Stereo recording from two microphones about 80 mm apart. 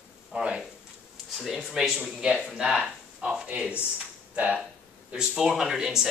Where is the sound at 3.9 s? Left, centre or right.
Centre.